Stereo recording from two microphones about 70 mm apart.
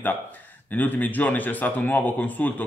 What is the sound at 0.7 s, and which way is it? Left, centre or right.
A man's voice, left.